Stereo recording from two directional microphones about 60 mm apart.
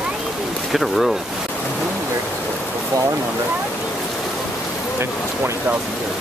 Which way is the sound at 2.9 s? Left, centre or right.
Right.